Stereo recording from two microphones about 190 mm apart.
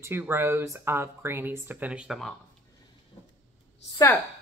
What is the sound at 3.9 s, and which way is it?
Speech, 15° left (ahead or behind).